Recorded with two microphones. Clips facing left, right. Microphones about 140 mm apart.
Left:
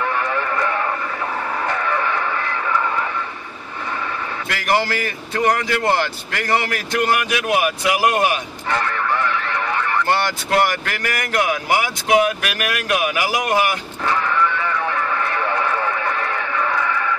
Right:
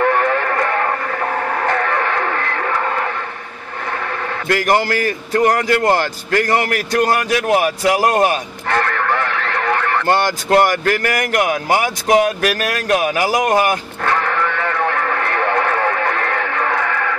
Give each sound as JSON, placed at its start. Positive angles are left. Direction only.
{"t": 0.0, "sound": "radio", "side_deg": -60}
{"t": 4.6, "sound": "speech", "side_deg": -45}
{"t": 8.6, "sound": "radio", "side_deg": -60}
{"t": 10.0, "sound": "speech", "side_deg": -40}
{"t": 12.1, "sound": "a sound", "side_deg": -35}